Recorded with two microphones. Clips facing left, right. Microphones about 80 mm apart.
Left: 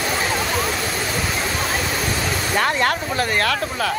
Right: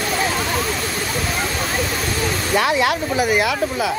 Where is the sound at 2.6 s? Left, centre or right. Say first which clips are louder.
Right 2 dB; centre.